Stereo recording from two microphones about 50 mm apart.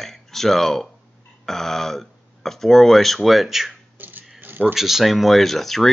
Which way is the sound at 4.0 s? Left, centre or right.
Right.